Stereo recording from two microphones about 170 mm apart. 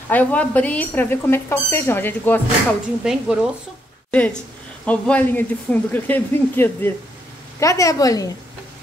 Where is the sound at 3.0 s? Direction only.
5° right (ahead or behind).